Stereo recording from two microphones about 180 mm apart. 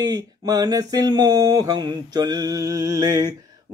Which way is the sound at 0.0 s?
20° right (ahead or behind).